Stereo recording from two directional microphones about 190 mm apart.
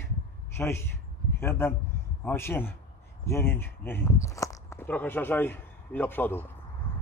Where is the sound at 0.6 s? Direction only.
10° left (ahead or behind).